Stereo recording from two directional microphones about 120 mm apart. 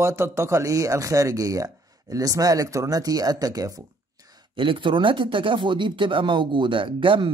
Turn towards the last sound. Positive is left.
turn(degrees=-45)  # may be behind; listen again after turning